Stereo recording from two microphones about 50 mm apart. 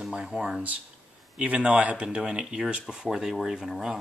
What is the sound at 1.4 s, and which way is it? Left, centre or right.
Speech, right.